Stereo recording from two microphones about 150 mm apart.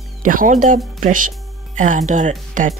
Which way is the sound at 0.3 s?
60° right (ahead or behind).